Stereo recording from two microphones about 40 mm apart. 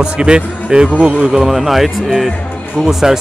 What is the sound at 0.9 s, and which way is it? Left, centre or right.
Speech, right.